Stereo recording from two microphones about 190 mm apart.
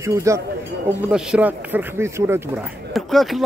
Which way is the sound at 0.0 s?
15° right (ahead or behind).